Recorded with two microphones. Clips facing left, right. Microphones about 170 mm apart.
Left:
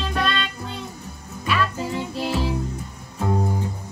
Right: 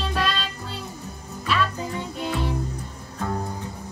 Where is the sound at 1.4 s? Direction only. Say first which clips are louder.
Left 1 dB; centre (ahead or behind).